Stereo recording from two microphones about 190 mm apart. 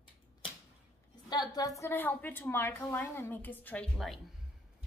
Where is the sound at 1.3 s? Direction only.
20° left (ahead or behind).